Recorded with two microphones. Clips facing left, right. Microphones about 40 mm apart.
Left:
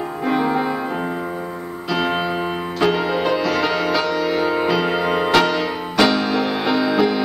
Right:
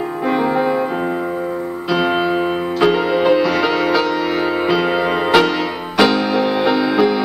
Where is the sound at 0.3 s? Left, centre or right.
Centre.